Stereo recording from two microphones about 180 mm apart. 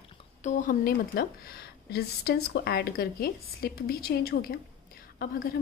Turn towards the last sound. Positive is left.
turn(degrees=50)  # may be behind; listen again after turning